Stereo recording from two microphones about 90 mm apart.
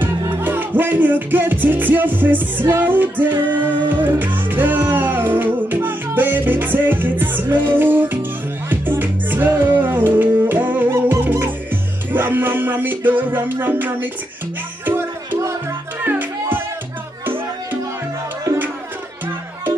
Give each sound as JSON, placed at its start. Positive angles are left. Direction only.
{"t": 0.0, "sound": "music", "side_deg": -20}